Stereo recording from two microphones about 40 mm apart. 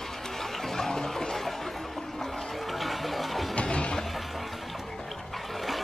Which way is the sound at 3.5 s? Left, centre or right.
Left.